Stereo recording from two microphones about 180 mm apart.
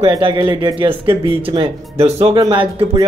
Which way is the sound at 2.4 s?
25° right (ahead or behind).